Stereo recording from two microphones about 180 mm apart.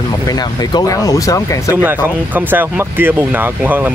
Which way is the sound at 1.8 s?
10° right (ahead or behind).